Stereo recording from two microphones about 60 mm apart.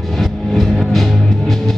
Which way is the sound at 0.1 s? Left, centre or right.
Centre.